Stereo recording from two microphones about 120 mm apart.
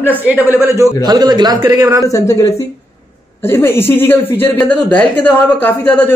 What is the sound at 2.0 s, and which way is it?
Speech, 25° left (ahead or behind).